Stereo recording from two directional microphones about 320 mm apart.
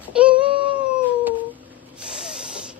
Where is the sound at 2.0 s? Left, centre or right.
Centre.